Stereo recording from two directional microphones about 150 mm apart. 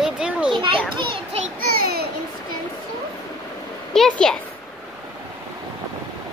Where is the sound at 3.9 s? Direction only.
5° left (ahead or behind).